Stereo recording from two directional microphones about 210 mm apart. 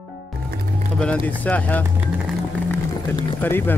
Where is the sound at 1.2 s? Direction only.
5° left (ahead or behind).